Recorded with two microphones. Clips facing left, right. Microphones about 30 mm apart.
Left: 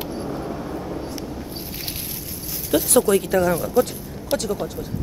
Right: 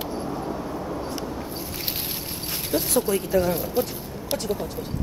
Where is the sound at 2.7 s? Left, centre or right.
Left.